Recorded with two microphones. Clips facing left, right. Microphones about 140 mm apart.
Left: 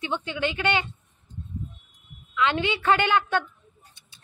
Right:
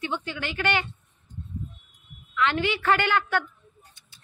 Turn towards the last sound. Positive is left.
turn(degrees=20)  # may be behind; listen again after turning